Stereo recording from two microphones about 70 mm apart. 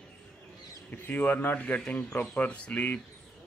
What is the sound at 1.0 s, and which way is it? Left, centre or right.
Speech, left.